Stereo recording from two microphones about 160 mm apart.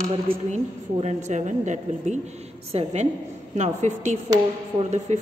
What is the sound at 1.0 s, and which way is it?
A woman's voice, 50° right (ahead or behind).